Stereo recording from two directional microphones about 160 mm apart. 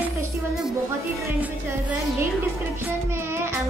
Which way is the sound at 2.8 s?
15° right (ahead or behind).